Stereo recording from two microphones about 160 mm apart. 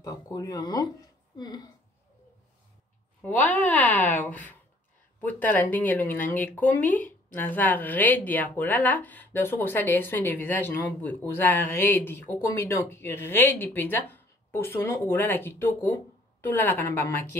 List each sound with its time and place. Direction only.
0.0 s speech: 20° left (ahead or behind)
3.2 s speech: 10° left (ahead or behind)